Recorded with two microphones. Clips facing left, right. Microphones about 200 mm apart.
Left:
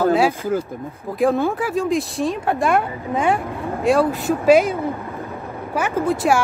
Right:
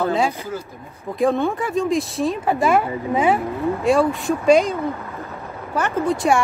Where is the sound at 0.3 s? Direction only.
50° left (ahead or behind).